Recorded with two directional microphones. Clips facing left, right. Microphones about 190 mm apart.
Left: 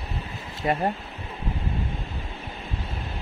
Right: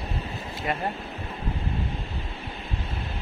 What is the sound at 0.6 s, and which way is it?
Speech, 30° left (ahead or behind).